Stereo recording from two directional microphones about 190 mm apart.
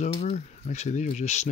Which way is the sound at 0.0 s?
35° left (ahead or behind).